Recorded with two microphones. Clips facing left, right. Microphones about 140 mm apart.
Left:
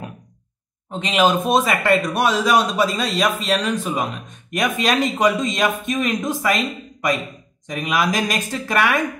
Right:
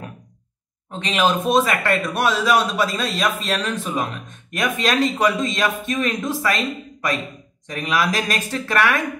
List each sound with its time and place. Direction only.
1.0 s speech: 15° left (ahead or behind)
7.6 s speech: 15° left (ahead or behind)